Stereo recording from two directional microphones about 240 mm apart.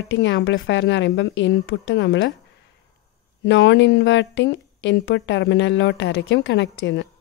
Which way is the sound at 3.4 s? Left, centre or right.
Left.